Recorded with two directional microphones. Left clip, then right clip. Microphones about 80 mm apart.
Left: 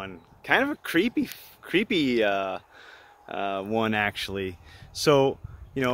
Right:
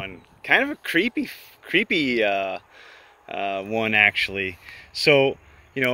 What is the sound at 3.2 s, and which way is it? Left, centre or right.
Speech, left.